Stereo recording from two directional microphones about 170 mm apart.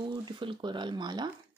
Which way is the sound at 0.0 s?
30° right (ahead or behind).